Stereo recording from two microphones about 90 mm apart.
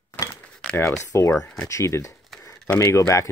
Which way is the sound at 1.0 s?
35° left (ahead or behind).